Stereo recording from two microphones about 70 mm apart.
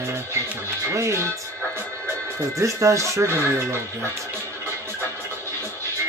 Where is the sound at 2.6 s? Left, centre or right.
Right.